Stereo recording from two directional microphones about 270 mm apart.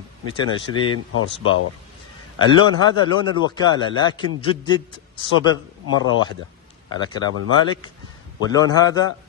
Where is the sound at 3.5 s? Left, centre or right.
Centre.